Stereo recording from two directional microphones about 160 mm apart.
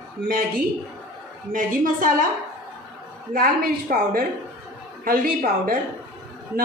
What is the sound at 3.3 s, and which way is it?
A woman's voice, 65° right (ahead or behind).